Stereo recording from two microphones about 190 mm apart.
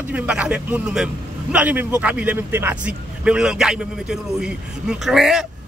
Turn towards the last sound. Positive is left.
turn(degrees=0)  # may be behind; listen again after turning